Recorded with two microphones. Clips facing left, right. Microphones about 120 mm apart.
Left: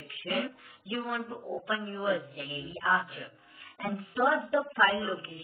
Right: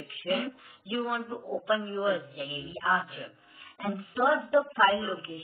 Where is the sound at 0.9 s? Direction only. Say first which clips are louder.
Right 3 dB; 10° right (ahead or behind).